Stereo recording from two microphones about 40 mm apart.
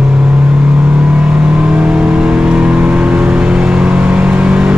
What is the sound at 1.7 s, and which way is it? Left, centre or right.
Vehicle, right.